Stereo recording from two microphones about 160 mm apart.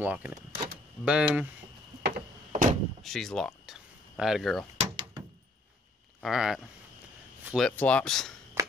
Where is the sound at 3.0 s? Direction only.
Centre (ahead or behind).